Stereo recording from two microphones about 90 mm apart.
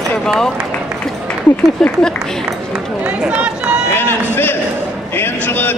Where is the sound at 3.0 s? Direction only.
15° right (ahead or behind).